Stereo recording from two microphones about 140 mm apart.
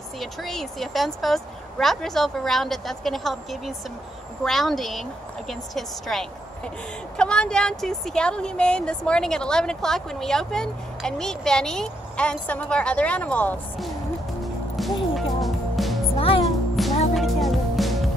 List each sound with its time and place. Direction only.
0.2 s speech: centre (ahead or behind)
14.4 s music: centre (ahead or behind)
16.2 s music: 40° left (ahead or behind)
16.8 s music: centre (ahead or behind)